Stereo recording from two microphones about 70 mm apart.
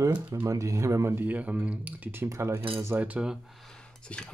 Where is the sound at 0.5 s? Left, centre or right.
Right.